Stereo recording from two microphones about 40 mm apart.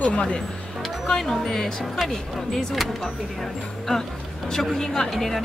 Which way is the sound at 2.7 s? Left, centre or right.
Centre.